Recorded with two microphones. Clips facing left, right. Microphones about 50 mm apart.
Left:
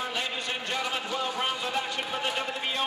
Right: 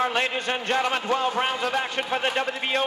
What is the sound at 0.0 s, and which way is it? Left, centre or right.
A man's voice, right.